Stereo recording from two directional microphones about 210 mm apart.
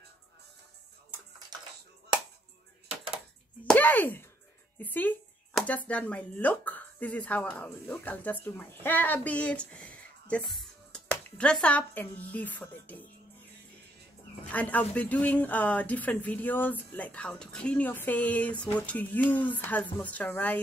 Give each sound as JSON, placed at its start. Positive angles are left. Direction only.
{"t": 3.6, "sound": "speech", "side_deg": 10}
{"t": 14.5, "sound": "speech", "side_deg": 5}